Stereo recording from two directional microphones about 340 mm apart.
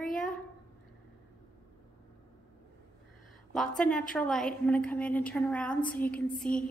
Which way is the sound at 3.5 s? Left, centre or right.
Centre.